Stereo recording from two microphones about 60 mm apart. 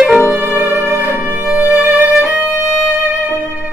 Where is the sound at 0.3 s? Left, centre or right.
Right.